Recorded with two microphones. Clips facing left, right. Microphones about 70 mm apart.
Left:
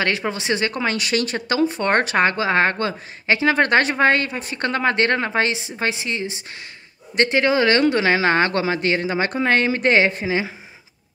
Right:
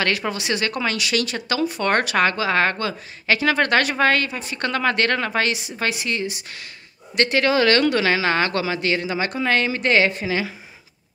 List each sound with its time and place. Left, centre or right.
0.0 s a woman's voice: left